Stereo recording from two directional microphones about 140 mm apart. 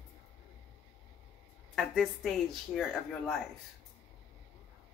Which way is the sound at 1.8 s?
Centre (ahead or behind).